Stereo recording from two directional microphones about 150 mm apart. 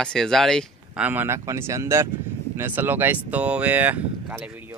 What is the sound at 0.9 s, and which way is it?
Speech, 10° right (ahead or behind).